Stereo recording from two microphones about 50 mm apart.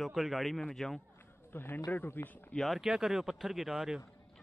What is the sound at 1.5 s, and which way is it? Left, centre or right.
Speech, left.